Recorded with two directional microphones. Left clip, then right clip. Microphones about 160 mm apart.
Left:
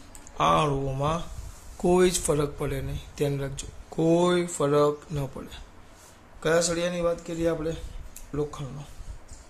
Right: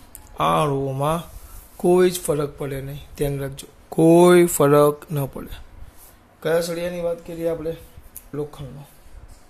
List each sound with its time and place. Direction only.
0.4 s speech: 35° right (ahead or behind)
1.8 s speech: 20° right (ahead or behind)
3.9 s speech: 45° right (ahead or behind)
5.2 s speech: 30° right (ahead or behind)
6.4 s speech: 15° right (ahead or behind)